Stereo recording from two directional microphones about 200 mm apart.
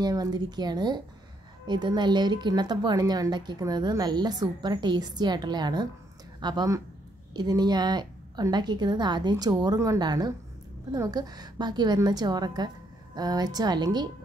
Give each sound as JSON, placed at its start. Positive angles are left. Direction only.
{"t": 0.0, "sound": "a woman's voice", "side_deg": -20}